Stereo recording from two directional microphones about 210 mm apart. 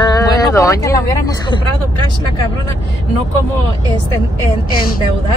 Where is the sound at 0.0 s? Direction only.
15° left (ahead or behind).